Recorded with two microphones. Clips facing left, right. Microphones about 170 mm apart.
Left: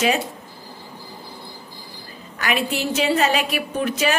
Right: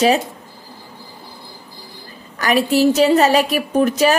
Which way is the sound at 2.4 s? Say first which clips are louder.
Right 9 dB; 40° right (ahead or behind).